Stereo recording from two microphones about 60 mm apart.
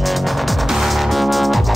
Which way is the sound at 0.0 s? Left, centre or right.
Centre.